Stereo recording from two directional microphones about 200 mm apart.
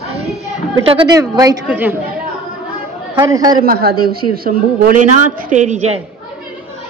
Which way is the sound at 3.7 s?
50° right (ahead or behind).